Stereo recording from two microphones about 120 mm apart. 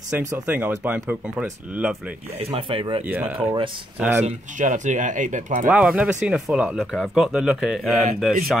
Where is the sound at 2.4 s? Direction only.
50° right (ahead or behind).